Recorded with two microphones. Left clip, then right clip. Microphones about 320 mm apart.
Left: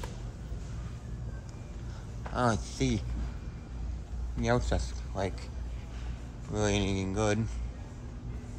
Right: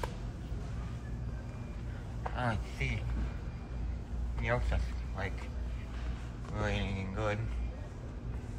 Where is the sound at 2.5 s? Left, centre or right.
Left.